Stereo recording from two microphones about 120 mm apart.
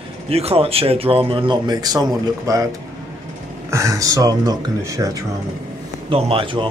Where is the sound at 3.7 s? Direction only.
25° right (ahead or behind).